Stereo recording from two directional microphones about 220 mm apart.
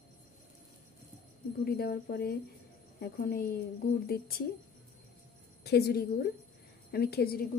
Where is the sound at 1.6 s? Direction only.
45° left (ahead or behind).